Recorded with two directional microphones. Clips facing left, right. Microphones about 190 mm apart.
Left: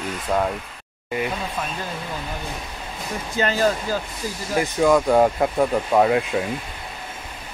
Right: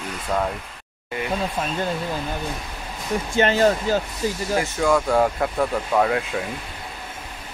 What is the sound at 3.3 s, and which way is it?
Speech, 25° right (ahead or behind).